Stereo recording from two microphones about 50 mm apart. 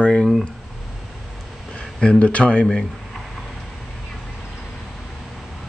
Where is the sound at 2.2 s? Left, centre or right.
Left.